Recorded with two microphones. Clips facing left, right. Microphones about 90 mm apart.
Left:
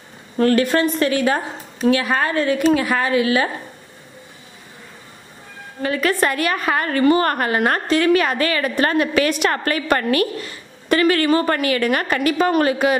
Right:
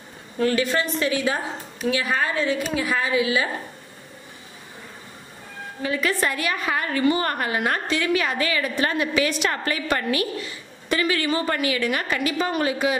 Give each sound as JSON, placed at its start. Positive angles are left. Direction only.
{"t": 0.4, "sound": "a woman's voice", "side_deg": 55}
{"t": 5.8, "sound": "a woman's voice", "side_deg": 55}